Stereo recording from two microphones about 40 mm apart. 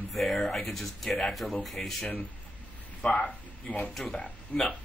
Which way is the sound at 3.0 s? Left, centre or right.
Left.